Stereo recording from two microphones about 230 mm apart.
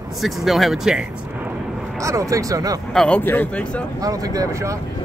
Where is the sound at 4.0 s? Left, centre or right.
Centre.